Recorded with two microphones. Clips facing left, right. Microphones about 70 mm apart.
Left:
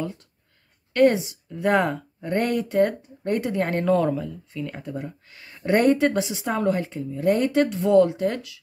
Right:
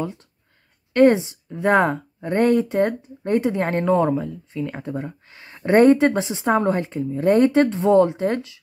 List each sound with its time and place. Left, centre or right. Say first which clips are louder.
0.9 s speech: right 3 dB; right